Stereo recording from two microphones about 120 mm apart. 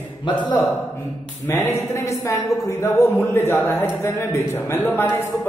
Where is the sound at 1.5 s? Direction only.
20° left (ahead or behind).